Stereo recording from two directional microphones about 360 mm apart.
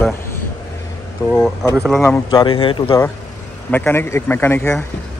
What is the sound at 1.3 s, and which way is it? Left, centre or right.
Speech, centre.